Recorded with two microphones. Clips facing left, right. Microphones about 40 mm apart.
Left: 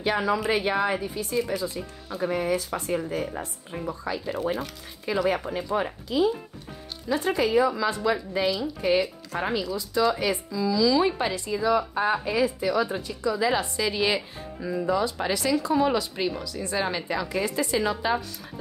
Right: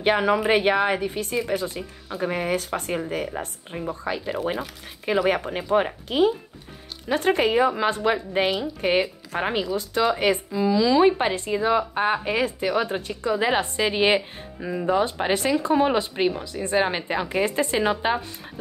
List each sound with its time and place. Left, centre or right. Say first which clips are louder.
0.0 s speech: right 4 dB; right